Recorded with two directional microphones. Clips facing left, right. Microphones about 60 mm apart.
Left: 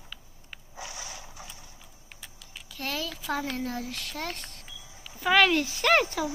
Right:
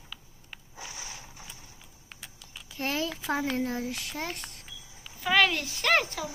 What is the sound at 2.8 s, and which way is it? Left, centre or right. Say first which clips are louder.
Speech: right 3 dB; right.